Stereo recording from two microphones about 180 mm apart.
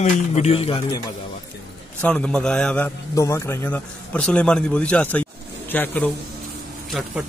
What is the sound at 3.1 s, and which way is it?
A man's voice, 15° left (ahead or behind).